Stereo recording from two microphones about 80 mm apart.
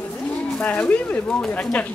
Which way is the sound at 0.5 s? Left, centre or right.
Centre.